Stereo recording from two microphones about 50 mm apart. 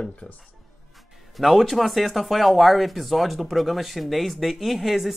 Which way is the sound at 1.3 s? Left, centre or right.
Centre.